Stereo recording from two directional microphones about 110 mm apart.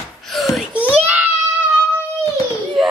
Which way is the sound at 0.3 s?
Centre (ahead or behind).